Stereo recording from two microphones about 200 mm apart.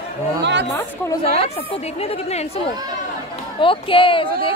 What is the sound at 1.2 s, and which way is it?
A woman's voice, 30° left (ahead or behind).